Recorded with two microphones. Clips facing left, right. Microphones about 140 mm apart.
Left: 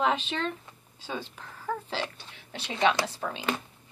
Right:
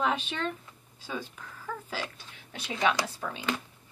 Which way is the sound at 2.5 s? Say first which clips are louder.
Left 2 dB; 25° left (ahead or behind).